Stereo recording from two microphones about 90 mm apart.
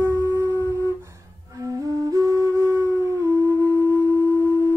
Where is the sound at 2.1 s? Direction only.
35° right (ahead or behind).